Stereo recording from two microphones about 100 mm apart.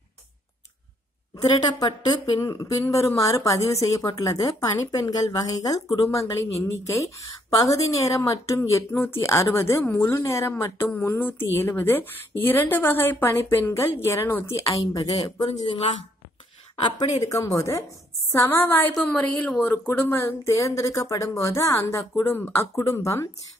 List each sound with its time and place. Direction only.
1.5 s speech: 40° left (ahead or behind)
2.4 s a woman's voice: 35° left (ahead or behind)
10.9 s a woman's voice: 20° left (ahead or behind); by 15.1 s 40° left (ahead or behind)
16.7 s speech: 75° left (ahead or behind)
17.3 s speech: 35° left (ahead or behind)
18.4 s a woman's voice: 20° left (ahead or behind)
20.5 s a woman's voice: 35° left (ahead or behind)